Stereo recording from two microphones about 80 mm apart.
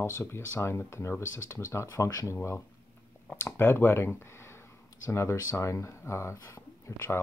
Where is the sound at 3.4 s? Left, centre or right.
Left.